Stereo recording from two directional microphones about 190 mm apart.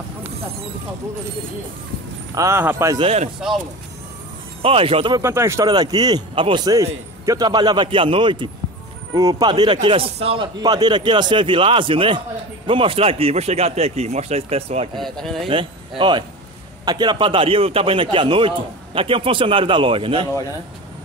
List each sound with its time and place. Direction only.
2.3 s speech: 15° right (ahead or behind)
3.0 s speech: 30° right (ahead or behind)
3.3 s speech: centre (ahead or behind)
4.6 s a man's voice: 30° right (ahead or behind)
5.2 s a man's voice: 15° right (ahead or behind); by 14.9 s 35° right (ahead or behind)
15.0 s speech: centre (ahead or behind)
15.4 s a man's voice: 25° right (ahead or behind)